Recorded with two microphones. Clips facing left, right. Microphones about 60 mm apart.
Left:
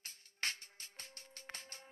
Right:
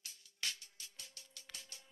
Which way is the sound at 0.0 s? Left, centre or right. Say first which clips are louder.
Left 3 dB; left.